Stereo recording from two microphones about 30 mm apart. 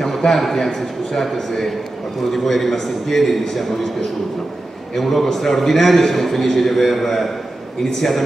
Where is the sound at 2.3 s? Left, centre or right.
Centre.